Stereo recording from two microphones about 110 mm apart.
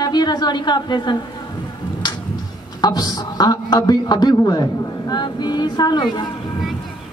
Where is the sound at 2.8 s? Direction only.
40° left (ahead or behind).